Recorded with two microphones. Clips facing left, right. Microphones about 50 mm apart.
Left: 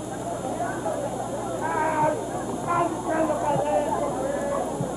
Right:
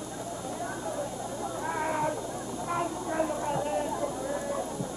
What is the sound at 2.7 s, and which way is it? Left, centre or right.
Vehicle, centre.